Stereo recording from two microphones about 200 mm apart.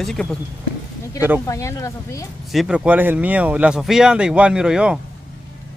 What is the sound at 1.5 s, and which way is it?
Speech, 15° left (ahead or behind).